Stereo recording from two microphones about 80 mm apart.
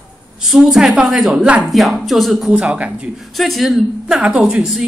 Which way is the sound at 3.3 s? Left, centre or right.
Centre.